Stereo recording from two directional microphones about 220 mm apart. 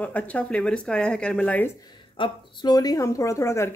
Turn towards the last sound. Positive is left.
turn(degrees=10)  # may be behind; listen again after turning